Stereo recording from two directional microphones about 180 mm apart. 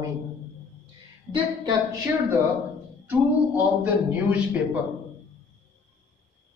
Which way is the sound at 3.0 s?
10° right (ahead or behind).